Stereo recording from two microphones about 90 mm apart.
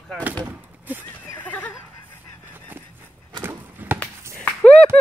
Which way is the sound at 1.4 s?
15° left (ahead or behind).